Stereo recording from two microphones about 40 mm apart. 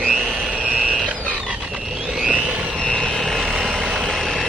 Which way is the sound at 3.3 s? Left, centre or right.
Centre.